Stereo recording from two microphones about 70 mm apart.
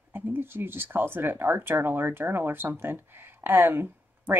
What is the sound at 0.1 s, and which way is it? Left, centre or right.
Speech, right.